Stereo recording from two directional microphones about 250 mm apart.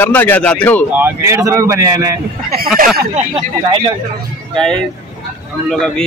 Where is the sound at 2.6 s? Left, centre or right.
Right.